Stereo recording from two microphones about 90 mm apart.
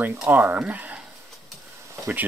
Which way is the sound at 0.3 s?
25° right (ahead or behind).